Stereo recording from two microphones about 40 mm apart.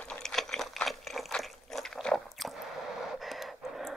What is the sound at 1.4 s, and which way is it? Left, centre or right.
Liquid, centre.